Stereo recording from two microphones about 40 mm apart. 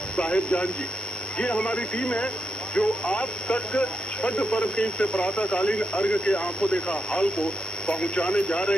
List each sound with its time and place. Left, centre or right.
0.2 s speech: left